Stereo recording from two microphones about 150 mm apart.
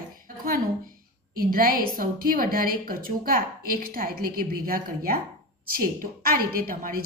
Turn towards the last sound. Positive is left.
turn(degrees=-70)  # may be behind; listen again after turning